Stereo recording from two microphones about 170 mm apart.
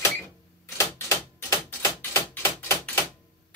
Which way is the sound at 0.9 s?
15° left (ahead or behind).